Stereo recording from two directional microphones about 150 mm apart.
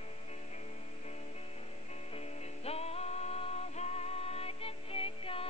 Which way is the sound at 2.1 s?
45° left (ahead or behind).